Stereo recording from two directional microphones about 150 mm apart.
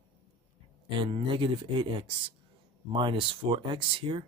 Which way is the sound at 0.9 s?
35° right (ahead or behind).